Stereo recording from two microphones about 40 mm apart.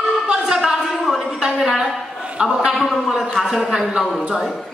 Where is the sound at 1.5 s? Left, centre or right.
Centre.